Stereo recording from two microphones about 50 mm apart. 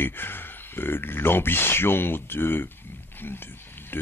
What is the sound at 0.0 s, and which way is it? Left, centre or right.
Speech, left.